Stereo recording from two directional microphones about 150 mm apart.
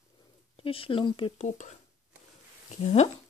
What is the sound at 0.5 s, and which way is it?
Speech, 40° left (ahead or behind).